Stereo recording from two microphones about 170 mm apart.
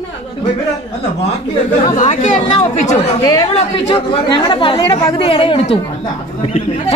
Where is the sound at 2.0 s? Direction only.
45° left (ahead or behind).